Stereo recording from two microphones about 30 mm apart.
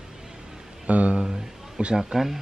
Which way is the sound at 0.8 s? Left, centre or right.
Right.